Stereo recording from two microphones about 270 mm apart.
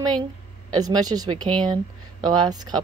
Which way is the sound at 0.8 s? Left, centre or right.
Centre.